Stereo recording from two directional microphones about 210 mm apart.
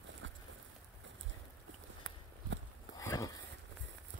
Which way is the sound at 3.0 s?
15° left (ahead or behind).